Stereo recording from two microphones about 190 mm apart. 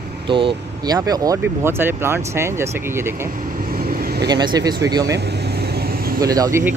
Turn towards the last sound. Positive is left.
turn(degrees=-15)  # may be behind; listen again after turning